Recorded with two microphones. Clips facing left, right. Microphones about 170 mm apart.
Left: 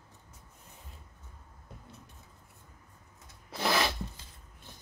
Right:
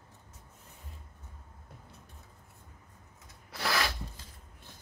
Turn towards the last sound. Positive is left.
turn(degrees=20)  # may be behind; listen again after turning